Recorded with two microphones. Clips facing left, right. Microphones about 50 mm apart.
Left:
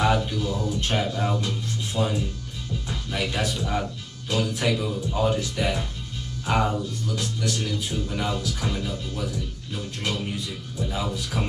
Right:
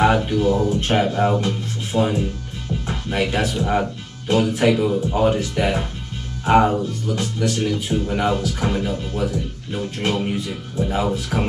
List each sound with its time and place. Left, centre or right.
0.0 s speech: right